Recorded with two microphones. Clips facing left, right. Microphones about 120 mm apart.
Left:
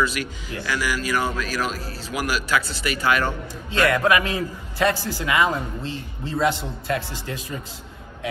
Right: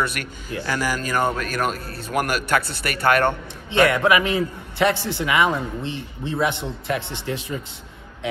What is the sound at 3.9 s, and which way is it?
A man's voice, 20° right (ahead or behind).